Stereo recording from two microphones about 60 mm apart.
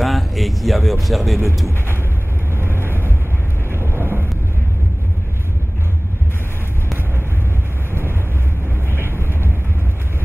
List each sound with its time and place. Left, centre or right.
0.0 s a sound: centre
2.5 s vehicle: right
3.7 s train: right